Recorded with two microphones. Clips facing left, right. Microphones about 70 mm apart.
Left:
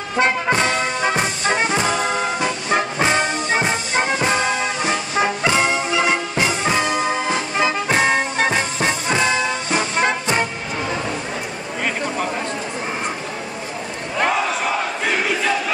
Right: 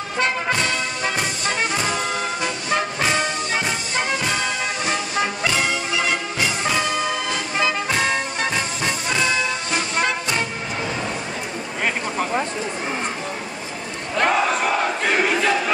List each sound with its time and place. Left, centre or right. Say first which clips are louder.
0.2 s music: left 4 dB; left
14.1 s battle cry: right 1 dB; centre